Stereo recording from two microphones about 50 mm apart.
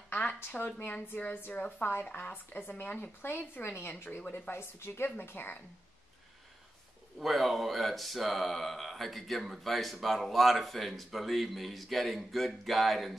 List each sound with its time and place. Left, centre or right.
0.1 s a sound: left
0.6 s speech: left
4.3 s speech: left
7.2 s speech: centre